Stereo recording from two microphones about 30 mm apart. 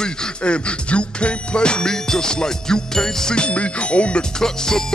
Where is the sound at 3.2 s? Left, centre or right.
Left.